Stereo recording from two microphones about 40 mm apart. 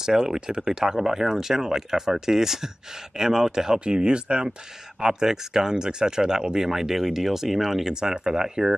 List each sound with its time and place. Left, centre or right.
0.0 s speech: centre
5.0 s speech: centre